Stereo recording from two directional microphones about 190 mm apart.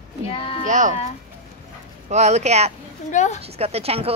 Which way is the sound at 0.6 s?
40° right (ahead or behind).